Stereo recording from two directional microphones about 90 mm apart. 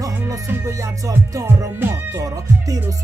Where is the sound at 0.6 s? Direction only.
35° right (ahead or behind).